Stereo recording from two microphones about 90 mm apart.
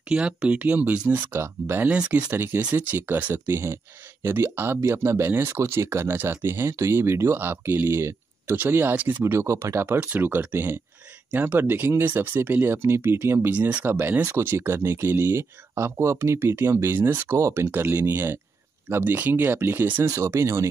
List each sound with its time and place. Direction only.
0.1 s speech: 15° right (ahead or behind)
1.9 s speech: 10° right (ahead or behind)
2.3 s speech: 25° right (ahead or behind)
9.9 s speech: 20° right (ahead or behind)